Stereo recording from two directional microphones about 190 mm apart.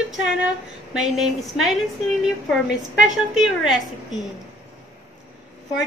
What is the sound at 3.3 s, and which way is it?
Speech, centre (ahead or behind).